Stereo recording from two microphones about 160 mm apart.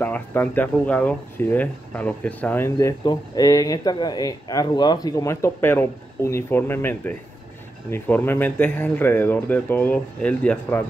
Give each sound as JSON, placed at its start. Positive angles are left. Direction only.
{"t": 0.0, "sound": "speech", "side_deg": 10}
{"t": 3.0, "sound": "speech", "side_deg": 25}